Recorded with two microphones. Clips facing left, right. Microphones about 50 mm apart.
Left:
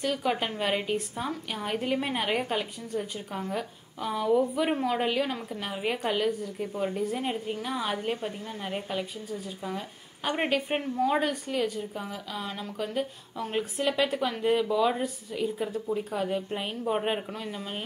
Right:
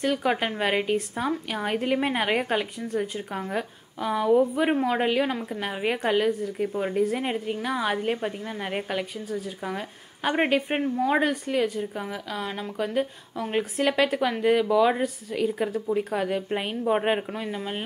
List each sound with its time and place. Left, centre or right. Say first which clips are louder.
0.0 s a woman's voice: right 4 dB; right
4.6 s a woman's voice: right 4 dB; right
5.5 s a woman's voice: right 4 dB; right
10.3 s a woman's voice: right 4 dB; right
11.2 s a woman's voice: right 4 dB; right
13.7 s a woman's voice: right 4 dB; right
15.3 s a woman's voice: right 4 dB; right